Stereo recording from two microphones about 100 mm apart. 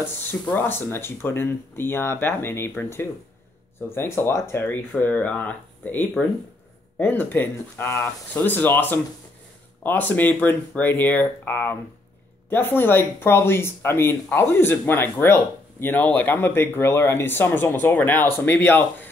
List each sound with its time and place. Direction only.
0.0 s speech: 20° left (ahead or behind)